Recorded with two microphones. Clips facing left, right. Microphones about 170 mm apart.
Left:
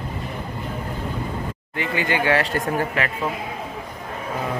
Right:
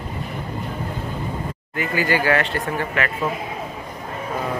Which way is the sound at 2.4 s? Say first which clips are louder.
Left 1 dB; 40° left (ahead or behind).